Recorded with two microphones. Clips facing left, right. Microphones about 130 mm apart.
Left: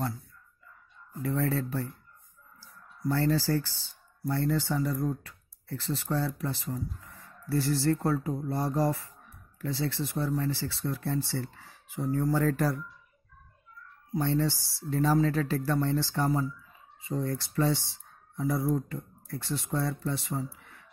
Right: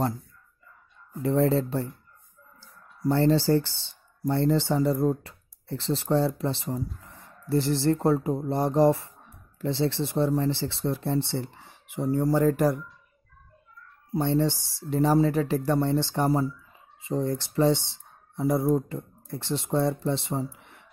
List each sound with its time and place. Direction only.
1.2 s speech: 25° right (ahead or behind)
3.1 s speech: 25° right (ahead or behind)
14.2 s speech: 20° right (ahead or behind)
20.5 s a sound: 20° right (ahead or behind)